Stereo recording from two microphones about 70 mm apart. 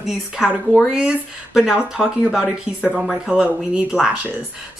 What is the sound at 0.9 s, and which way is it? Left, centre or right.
Speech, centre.